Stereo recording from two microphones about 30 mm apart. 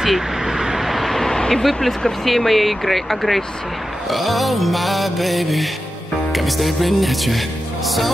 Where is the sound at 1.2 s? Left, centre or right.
Centre.